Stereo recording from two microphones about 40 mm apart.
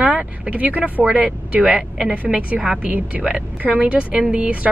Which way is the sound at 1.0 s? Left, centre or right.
Right.